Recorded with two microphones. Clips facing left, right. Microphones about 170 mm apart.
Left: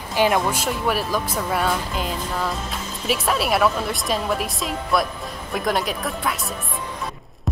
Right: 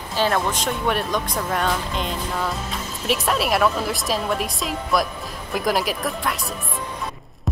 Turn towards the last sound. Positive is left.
turn(degrees=0)  # may be behind; listen again after turning